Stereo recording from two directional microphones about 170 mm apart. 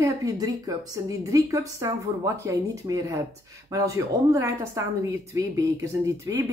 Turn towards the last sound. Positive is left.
turn(degrees=-20)  # may be behind; listen again after turning